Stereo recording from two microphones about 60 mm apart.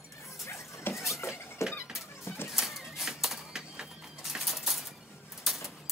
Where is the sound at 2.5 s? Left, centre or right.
Centre.